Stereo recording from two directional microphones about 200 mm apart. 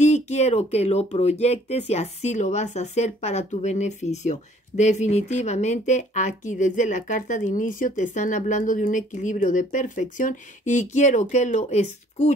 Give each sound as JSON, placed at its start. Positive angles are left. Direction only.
{"t": 0.0, "sound": "speech", "side_deg": 35}